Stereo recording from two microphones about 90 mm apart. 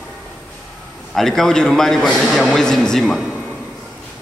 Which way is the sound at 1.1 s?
5° left (ahead or behind).